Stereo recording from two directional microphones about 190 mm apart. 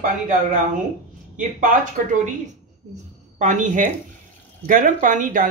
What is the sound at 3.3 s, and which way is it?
A woman's voice, 40° right (ahead or behind).